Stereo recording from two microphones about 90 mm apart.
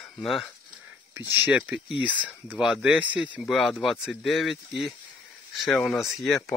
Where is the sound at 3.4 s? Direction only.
Centre (ahead or behind).